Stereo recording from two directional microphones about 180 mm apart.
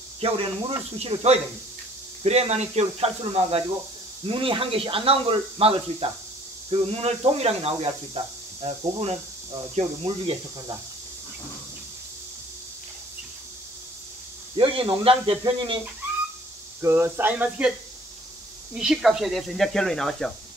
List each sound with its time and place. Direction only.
0.2 s speech: 30° right (ahead or behind)
14.6 s speech: 30° right (ahead or behind)
16.8 s speech: 15° right (ahead or behind)
18.8 s speech: 5° right (ahead or behind)